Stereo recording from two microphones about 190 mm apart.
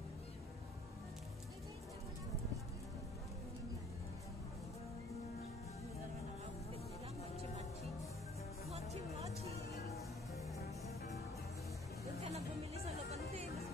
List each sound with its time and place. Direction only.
9.8 s music: centre (ahead or behind)
12.2 s music: 35° right (ahead or behind)